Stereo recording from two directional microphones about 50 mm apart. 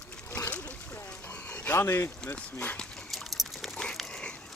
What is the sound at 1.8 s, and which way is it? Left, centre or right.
Speech, left.